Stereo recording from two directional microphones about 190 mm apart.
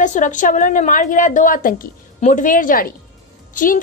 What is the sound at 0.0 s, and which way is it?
A woman's voice, 40° left (ahead or behind).